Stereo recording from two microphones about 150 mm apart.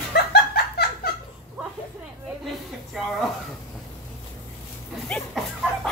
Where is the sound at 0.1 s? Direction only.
90° left.